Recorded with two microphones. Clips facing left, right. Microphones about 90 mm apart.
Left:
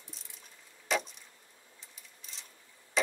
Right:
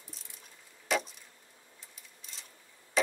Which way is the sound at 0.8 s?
Centre (ahead or behind).